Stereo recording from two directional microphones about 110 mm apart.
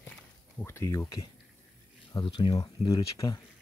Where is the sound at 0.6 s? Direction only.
25° left (ahead or behind).